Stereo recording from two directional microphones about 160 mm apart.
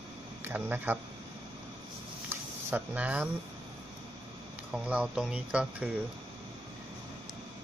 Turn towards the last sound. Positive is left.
turn(degrees=-10)  # may be behind; listen again after turning